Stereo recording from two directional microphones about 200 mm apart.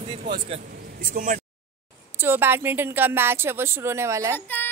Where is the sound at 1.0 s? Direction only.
40° right (ahead or behind).